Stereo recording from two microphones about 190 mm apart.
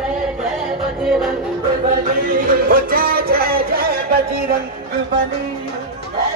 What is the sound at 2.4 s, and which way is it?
Music, 50° right (ahead or behind).